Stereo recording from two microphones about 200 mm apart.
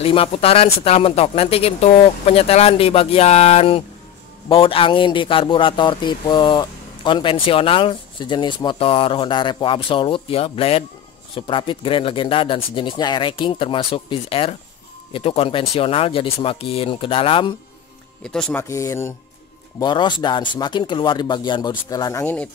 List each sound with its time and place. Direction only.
0.0 s speech: 30° left (ahead or behind)
18.2 s speech: 5° left (ahead or behind)